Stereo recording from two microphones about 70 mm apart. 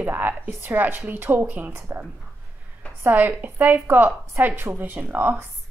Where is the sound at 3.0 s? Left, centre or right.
Right.